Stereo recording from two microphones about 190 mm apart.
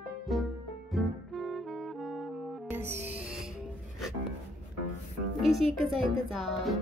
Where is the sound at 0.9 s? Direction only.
Centre (ahead or behind).